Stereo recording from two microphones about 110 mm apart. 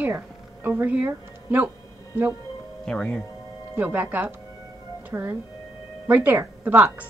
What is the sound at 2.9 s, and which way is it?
Speech, 5° left (ahead or behind).